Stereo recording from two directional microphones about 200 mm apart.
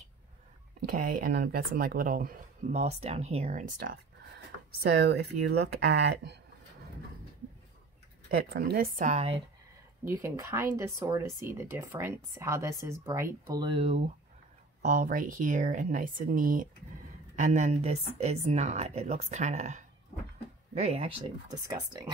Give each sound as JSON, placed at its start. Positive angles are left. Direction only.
{"t": 0.8, "sound": "speech", "side_deg": -45}
{"t": 2.7, "sound": "speech", "side_deg": -30}
{"t": 4.8, "sound": "speech", "side_deg": -55}
{"t": 8.3, "sound": "speech", "side_deg": -50}
{"t": 10.0, "sound": "speech", "side_deg": -15}
{"t": 14.8, "sound": "speech", "side_deg": -40}